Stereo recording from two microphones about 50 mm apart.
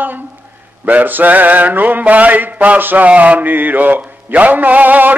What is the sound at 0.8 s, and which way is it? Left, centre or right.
Mantra, right.